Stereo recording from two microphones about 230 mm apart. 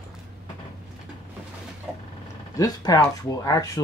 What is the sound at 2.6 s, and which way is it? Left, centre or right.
Speech, centre.